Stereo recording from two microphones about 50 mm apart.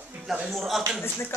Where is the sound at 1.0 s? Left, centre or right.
Left.